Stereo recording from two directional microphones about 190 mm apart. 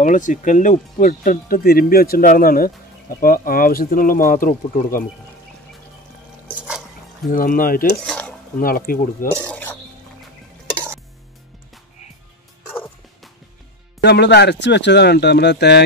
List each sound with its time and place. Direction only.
0.0 s speech: 40° left (ahead or behind)
7.3 s speech: 50° left (ahead or behind)
8.0 s dishes: 5° left (ahead or behind)
8.5 s speech: 50° left (ahead or behind)
9.3 s a sound: 10° left (ahead or behind)
14.0 s speech: 60° left (ahead or behind)